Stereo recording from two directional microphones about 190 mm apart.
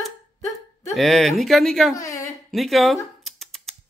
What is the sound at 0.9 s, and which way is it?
Speech, centre (ahead or behind).